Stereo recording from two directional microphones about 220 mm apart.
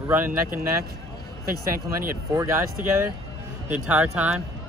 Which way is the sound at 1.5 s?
40° right (ahead or behind).